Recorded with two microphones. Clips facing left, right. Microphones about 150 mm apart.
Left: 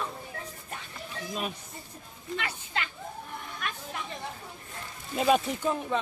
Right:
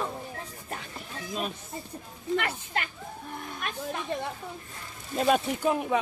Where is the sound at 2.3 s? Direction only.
50° right (ahead or behind).